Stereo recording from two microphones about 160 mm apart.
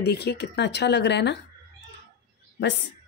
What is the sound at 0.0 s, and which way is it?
Speech, 90° left.